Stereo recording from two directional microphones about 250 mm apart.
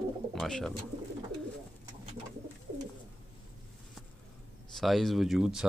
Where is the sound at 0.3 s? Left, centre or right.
Centre.